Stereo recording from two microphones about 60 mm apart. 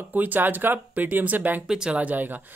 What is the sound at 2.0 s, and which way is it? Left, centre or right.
Speech, right.